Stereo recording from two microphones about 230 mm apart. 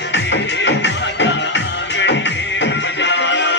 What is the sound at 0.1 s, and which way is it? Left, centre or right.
Music, left.